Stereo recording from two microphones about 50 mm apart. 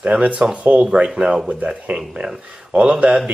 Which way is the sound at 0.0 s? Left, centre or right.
Right.